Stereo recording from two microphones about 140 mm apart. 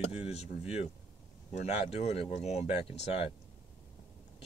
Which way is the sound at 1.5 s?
55° left (ahead or behind).